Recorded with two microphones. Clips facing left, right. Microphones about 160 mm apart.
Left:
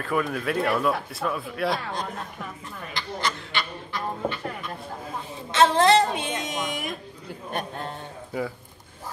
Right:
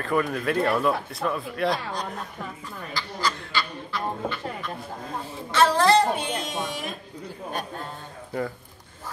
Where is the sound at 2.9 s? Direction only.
20° left (ahead or behind).